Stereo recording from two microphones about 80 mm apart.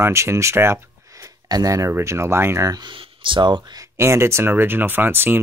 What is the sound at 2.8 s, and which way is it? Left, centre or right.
Speech, right.